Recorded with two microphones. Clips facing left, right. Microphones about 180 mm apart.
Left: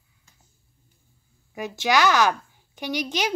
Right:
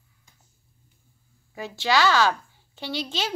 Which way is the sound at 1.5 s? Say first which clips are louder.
Left 1 dB; 15° left (ahead or behind).